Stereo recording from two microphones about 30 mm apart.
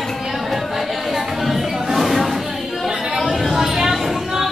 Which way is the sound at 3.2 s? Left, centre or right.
Centre.